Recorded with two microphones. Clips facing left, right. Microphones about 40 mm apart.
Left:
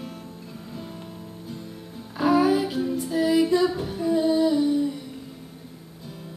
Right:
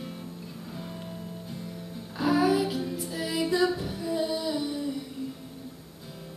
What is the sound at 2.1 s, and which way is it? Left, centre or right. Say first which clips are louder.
Music: left 4 dB; centre.